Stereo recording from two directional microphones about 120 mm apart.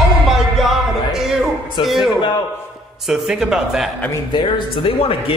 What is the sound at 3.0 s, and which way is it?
Speech, 5° right (ahead or behind).